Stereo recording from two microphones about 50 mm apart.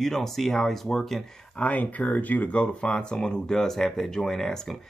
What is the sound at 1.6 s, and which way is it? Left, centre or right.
Speech, left.